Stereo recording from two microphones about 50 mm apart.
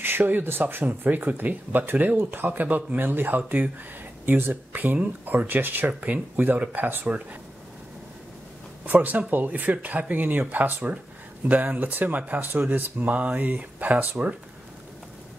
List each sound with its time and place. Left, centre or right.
0.0 s speech: right
8.8 s speech: right